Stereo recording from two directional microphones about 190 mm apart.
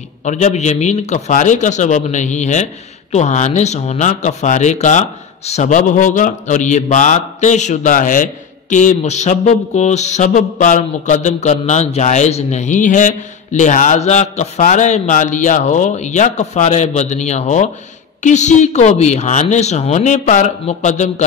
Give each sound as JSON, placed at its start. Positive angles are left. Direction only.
{"t": 0.2, "sound": "a man's voice", "side_deg": 40}